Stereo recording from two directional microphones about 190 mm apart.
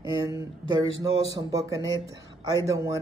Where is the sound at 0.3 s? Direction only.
15° right (ahead or behind).